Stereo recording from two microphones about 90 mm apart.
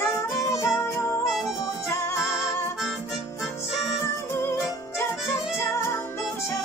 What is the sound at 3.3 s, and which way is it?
Music, 30° left (ahead or behind).